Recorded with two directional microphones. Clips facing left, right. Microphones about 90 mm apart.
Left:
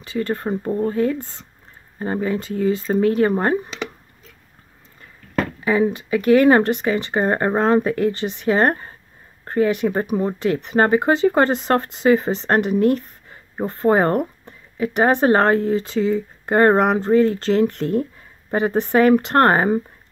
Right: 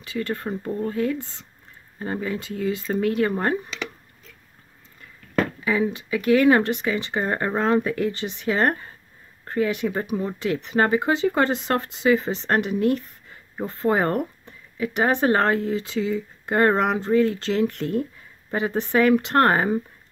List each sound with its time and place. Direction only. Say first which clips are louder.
0.0 s speech: left 4 dB; 30° left (ahead or behind)
5.6 s speech: left 5 dB; 35° left (ahead or behind)